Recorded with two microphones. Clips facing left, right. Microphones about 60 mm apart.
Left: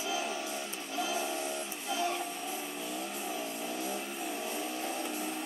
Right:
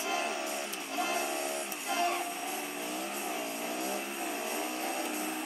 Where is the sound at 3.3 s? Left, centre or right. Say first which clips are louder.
Right 1 dB; right.